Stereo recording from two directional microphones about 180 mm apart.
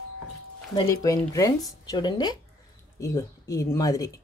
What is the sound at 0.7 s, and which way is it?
A woman's voice, 20° left (ahead or behind).